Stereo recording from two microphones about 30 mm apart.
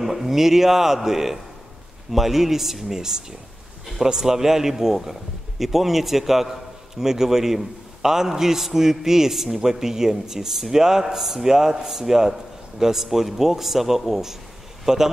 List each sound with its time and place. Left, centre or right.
0.0 s a man's voice: centre
3.0 s a man's voice: right; by 14.3 s centre
14.9 s a man's voice: centre